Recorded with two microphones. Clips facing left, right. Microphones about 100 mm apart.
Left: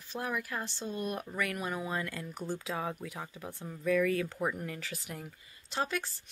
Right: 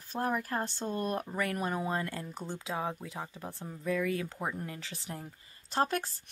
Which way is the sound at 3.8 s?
20° right (ahead or behind).